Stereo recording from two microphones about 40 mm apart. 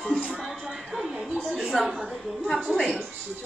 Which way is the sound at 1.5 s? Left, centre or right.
Centre.